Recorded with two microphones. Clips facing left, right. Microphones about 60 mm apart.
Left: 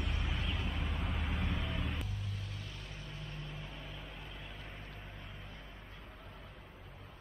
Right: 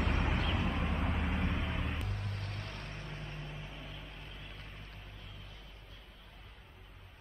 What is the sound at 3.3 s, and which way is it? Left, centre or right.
Vehicle, centre.